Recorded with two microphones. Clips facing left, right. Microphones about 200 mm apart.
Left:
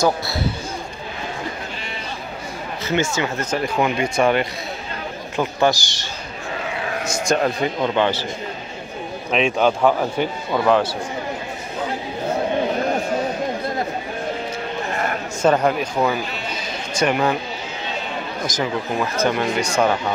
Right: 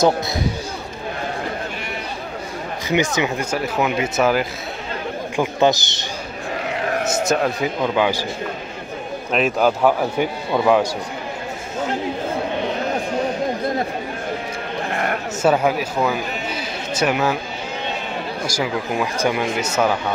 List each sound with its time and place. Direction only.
2.9 s speech: 15° right (ahead or behind)
3.6 s speech: 5° right (ahead or behind)
5.3 s a man's voice: 15° right (ahead or behind)
7.2 s speech: 5° right (ahead or behind)
9.3 s speech: 5° right (ahead or behind)
15.4 s speech: 5° right (ahead or behind)
18.4 s speech: 10° right (ahead or behind)